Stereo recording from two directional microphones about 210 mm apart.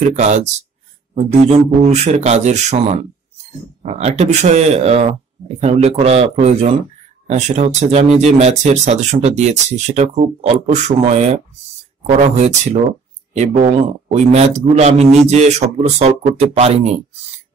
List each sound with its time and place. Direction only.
0.1 s speech: 35° right (ahead or behind)